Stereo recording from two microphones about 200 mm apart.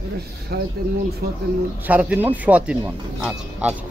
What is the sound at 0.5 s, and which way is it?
Speech, 50° right (ahead or behind).